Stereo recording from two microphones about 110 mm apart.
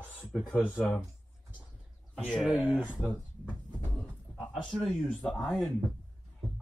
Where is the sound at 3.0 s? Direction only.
15° left (ahead or behind).